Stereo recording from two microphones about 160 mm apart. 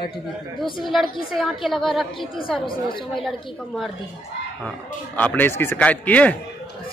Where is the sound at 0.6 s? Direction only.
30° left (ahead or behind).